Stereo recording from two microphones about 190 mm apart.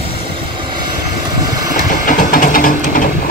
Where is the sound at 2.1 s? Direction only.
45° left (ahead or behind).